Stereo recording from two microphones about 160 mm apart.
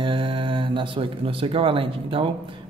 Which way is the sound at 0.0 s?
35° right (ahead or behind).